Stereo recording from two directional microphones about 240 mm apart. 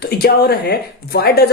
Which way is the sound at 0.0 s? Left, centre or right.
Left.